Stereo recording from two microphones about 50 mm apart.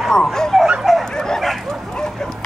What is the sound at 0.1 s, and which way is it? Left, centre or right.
Dog, centre.